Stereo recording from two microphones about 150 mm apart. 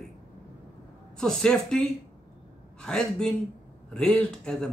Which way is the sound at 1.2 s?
5° left (ahead or behind).